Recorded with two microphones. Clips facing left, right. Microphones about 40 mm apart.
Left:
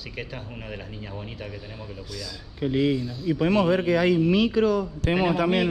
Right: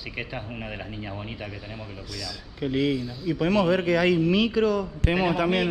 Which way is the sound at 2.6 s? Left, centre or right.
Right.